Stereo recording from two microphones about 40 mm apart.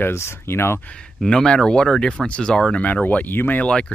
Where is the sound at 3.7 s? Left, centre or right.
Left.